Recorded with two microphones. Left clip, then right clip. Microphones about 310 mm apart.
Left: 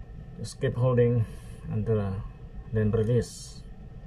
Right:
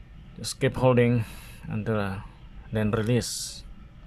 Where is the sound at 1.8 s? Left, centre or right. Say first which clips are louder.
Right 1 dB; right.